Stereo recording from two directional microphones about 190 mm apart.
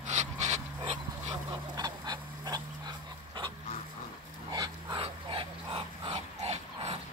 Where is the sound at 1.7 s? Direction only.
20° right (ahead or behind).